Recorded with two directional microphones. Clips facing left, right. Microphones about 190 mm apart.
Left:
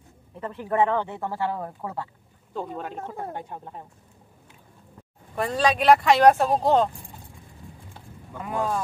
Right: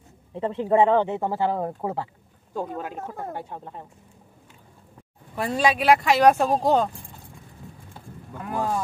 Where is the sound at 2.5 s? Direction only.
10° right (ahead or behind).